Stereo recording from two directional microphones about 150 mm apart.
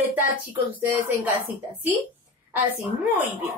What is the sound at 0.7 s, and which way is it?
Speech, 10° right (ahead or behind).